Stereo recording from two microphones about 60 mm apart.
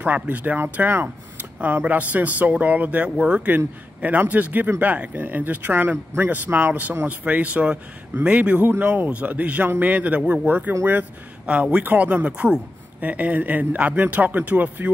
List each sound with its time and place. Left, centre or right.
0.0 s speech: right